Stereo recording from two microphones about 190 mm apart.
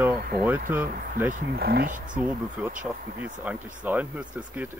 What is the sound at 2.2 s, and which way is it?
Speech, 5° right (ahead or behind).